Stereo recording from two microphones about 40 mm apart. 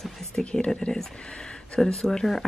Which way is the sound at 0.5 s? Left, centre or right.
Centre.